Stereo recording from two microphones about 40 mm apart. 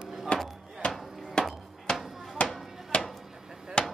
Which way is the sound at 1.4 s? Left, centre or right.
Left.